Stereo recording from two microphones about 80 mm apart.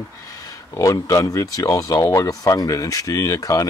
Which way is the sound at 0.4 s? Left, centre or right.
Left.